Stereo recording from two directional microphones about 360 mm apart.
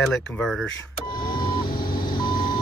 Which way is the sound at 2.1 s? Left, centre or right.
Centre.